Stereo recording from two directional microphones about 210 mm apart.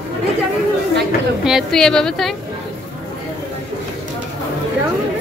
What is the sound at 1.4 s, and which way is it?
Speech, centre (ahead or behind).